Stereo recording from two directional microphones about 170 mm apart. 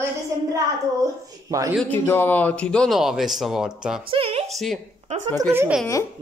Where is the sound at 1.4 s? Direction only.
20° right (ahead or behind).